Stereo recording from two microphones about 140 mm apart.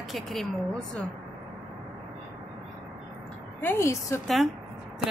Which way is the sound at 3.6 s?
15° left (ahead or behind).